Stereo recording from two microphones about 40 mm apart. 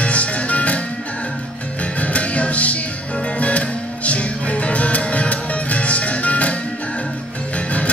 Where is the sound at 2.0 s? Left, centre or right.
Left.